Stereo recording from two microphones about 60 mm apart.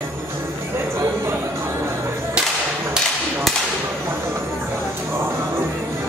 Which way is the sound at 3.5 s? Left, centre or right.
Centre.